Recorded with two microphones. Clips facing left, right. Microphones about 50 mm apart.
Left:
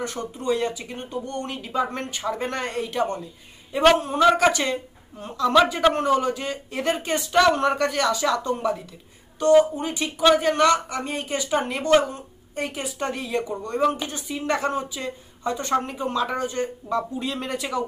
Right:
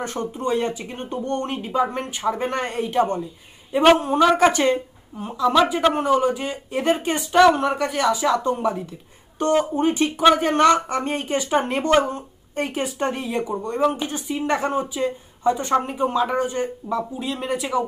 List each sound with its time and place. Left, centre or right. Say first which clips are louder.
0.0 s speech: right 3 dB; right
1.8 s speech: right 3 dB; centre
4.4 s speech: right 4 dB; right
5.1 s speech: even; centre
6.0 s speech: right 2 dB; centre
9.4 s speech: left 2 dB; right
13.7 s speech: right 1 dB; centre
14.0 s speech: right 3 dB; right
16.9 s speech: left 1 dB; centre